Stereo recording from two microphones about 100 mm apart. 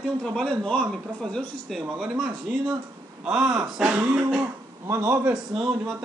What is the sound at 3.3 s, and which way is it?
Speech, 5° right (ahead or behind).